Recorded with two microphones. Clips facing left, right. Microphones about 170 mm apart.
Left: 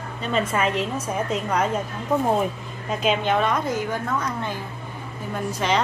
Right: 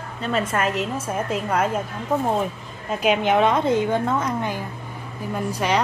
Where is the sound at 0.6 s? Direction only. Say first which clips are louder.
Even; centre (ahead or behind).